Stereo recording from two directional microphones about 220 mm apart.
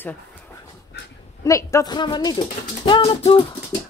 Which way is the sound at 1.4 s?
15° left (ahead or behind).